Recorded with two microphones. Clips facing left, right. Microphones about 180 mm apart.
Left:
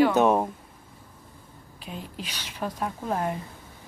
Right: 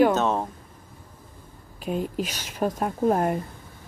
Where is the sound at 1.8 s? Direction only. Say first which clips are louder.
Right 11 dB; 50° right (ahead or behind).